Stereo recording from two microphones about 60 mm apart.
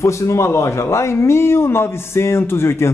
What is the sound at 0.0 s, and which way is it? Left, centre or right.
A man's voice, left.